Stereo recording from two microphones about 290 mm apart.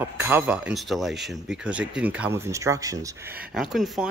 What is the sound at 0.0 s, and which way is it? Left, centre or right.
Speech, centre.